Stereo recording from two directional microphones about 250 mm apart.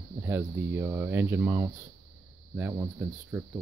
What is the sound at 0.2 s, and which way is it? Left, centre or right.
Speech, centre.